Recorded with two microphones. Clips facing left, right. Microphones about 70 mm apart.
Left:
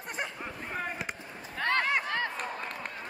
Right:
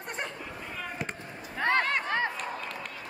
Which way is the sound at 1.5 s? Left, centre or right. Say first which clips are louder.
Right 3 dB; centre.